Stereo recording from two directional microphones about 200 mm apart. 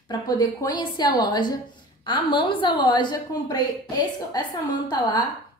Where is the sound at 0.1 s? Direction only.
20° left (ahead or behind).